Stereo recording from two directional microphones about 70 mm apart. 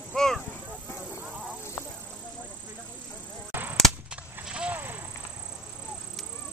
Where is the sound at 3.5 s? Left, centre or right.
Right.